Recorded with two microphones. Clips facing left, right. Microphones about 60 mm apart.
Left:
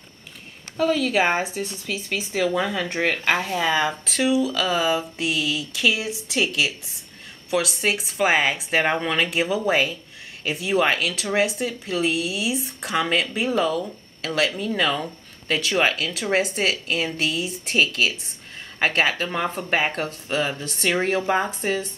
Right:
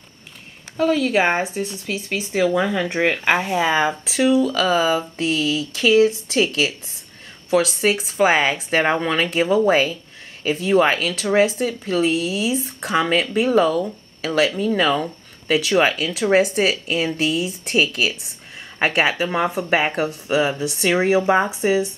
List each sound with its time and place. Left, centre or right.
0.7 s speech: centre
3.9 s speech: centre